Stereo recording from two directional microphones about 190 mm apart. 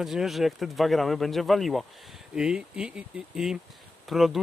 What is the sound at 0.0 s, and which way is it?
Speech, centre (ahead or behind).